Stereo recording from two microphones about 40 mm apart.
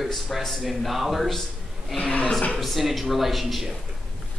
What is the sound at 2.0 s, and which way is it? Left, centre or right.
Speech, left.